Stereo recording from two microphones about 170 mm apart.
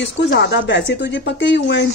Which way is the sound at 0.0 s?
90° left.